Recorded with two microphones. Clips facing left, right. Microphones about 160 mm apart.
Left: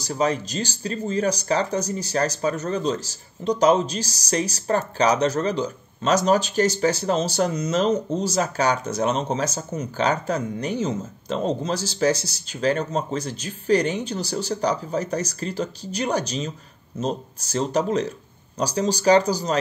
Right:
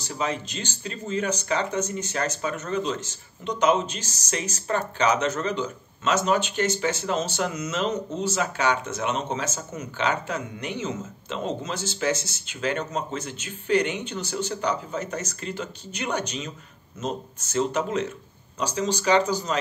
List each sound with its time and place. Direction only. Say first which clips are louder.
0.0 s speech: left 6 dB; 40° left (ahead or behind)